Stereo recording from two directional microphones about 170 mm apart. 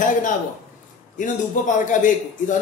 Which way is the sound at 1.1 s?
50° left (ahead or behind).